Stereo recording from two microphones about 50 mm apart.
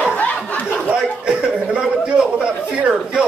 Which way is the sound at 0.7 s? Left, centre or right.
Centre.